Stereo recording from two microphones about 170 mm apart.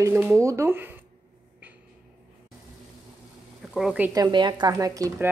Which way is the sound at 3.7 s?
5° right (ahead or behind).